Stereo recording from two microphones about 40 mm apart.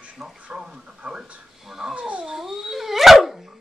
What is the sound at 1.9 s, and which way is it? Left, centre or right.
Cat, right.